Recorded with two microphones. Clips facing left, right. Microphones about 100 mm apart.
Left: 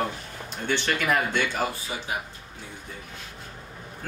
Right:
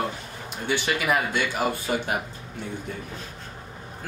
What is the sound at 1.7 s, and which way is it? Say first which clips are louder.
Speech: right 8 dB; 60° right (ahead or behind).